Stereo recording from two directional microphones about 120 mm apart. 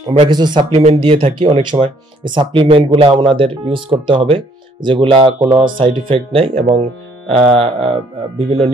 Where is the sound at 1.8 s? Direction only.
40° right (ahead or behind).